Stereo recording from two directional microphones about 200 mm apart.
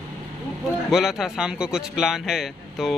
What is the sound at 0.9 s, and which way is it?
Speech, centre (ahead or behind).